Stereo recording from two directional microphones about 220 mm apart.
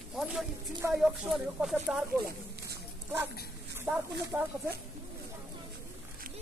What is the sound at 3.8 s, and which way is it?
Speech, 5° right (ahead or behind).